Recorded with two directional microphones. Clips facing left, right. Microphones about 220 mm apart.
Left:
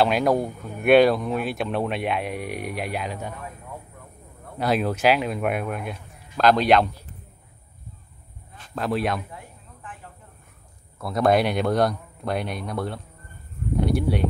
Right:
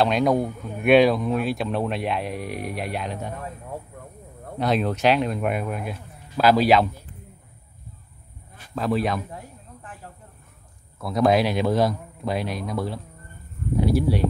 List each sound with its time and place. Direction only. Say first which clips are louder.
0.0 s speech: even; centre (ahead or behind)
4.6 s speech: even; 5° left (ahead or behind)
8.7 s speech: right 1 dB; centre (ahead or behind)
9.8 s snake: left 1 dB; 40° right (ahead or behind)
11.0 s speech: right 1 dB; centre (ahead or behind)